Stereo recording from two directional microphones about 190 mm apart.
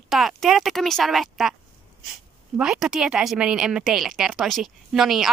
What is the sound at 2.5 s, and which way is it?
Speech, 5° right (ahead or behind).